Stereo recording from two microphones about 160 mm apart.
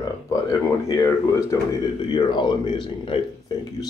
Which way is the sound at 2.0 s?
30° left (ahead or behind).